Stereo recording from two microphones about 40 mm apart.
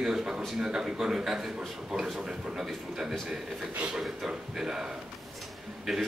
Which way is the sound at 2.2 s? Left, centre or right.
Centre.